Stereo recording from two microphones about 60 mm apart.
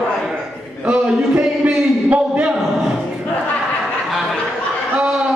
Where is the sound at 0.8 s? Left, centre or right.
Centre.